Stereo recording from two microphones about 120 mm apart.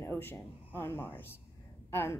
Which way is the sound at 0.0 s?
20° left (ahead or behind).